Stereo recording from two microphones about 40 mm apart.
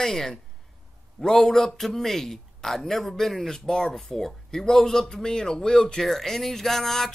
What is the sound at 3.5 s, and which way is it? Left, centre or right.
Speech, centre.